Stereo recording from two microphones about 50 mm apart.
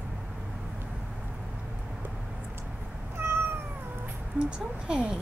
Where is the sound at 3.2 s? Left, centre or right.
Right.